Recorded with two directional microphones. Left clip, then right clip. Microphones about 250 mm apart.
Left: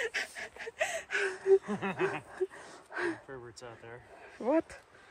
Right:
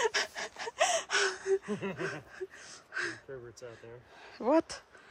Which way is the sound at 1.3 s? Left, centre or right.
Centre.